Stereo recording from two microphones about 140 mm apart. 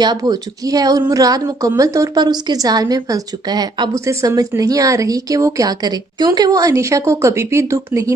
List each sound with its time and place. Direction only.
0.0 s a woman's voice: 30° right (ahead or behind)